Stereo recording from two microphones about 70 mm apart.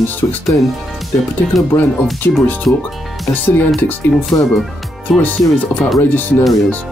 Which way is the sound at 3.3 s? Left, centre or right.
Left.